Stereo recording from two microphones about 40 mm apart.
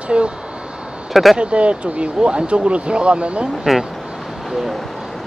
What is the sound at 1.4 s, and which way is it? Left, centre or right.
Speech, right.